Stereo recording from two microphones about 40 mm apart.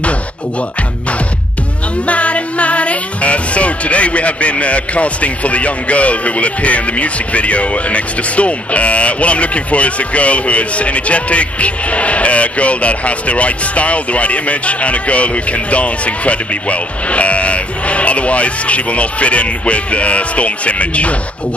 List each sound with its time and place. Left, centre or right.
2.0 s speech: left